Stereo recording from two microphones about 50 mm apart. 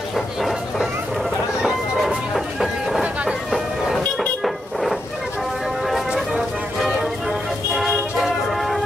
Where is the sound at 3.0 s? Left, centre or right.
Centre.